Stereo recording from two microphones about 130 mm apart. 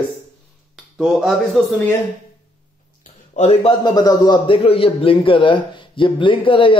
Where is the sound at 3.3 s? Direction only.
55° left (ahead or behind).